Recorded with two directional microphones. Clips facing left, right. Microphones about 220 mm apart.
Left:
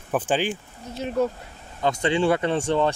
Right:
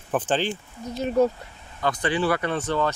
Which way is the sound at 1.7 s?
20° left (ahead or behind).